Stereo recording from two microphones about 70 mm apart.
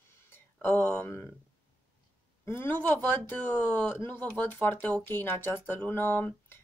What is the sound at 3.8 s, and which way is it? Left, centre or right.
Speech, left.